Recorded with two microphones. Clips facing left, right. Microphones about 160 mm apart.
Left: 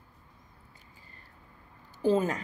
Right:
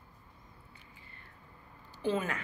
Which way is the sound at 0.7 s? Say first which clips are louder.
Even; 40° left (ahead or behind).